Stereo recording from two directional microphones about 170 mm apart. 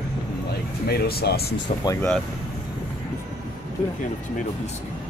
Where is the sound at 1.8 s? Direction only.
20° left (ahead or behind).